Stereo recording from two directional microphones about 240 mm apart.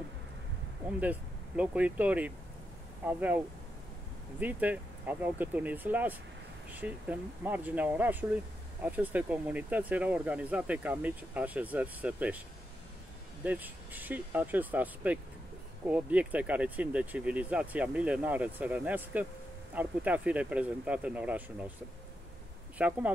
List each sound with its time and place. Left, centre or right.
0.8 s speech: centre
13.4 s speech: centre
22.8 s speech: centre